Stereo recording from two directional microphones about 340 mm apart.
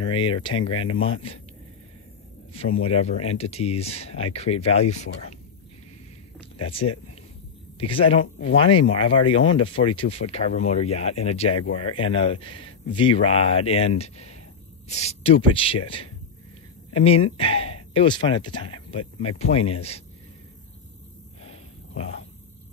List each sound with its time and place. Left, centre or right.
0.0 s speech: centre
2.5 s speech: centre
6.6 s speech: centre
11.6 s speech: left
12.0 s speech: centre
16.9 s speech: centre
21.4 s a sound: centre